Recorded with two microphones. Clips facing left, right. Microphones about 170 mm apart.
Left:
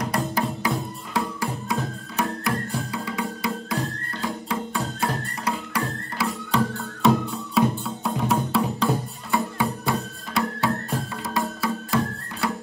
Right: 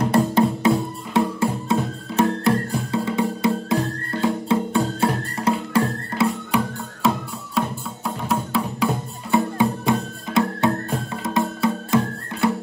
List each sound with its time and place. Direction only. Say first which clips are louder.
0.0 s music: right 8 dB; 30° right (ahead or behind)
6.5 s music: right 1 dB; centre (ahead or behind)
9.3 s music: right 5 dB; 20° right (ahead or behind)